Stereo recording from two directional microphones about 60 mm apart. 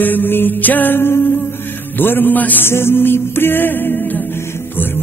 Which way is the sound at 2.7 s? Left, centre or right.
Left.